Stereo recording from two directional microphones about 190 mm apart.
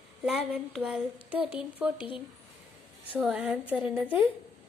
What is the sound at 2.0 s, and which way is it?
Speech, 25° left (ahead or behind).